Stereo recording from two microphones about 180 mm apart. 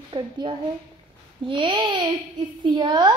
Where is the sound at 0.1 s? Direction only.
25° right (ahead or behind).